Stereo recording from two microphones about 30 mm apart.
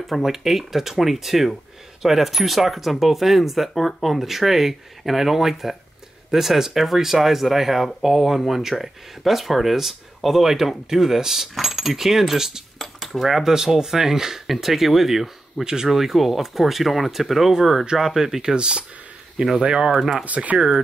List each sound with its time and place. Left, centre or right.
0.2 s speech: centre
13.0 s speech: centre
13.4 s speech: centre
14.5 s speech: centre
15.6 s speech: centre
15.9 s speech: centre
18.4 s speech: right
19.3 s speech: centre
20.2 s speech: right
20.5 s speech: right